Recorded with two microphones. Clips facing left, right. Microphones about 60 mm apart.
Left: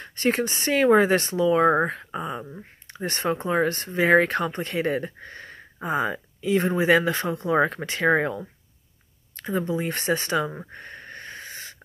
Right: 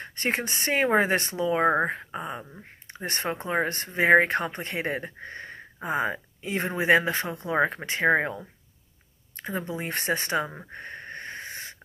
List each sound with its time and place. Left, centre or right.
0.0 s speech: right
7.0 s speech: right
9.4 s speech: right
10.7 s sniff: right